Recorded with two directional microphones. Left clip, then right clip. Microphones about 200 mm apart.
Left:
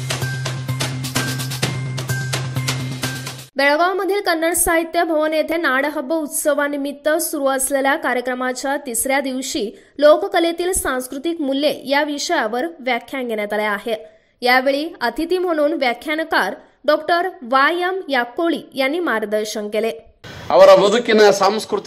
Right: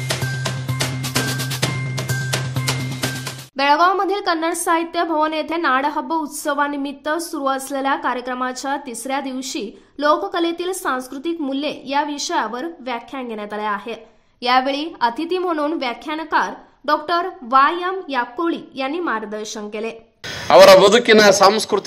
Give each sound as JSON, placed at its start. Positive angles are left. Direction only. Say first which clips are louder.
{"t": 0.1, "sound": "music", "louder": "even", "side_deg": 0}
{"t": 3.5, "sound": "a woman's voice", "louder": "right 1 dB", "side_deg": 10}
{"t": 20.4, "sound": "speech", "louder": "right 2 dB", "side_deg": -35}